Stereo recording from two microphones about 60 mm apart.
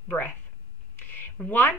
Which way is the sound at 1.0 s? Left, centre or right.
Left.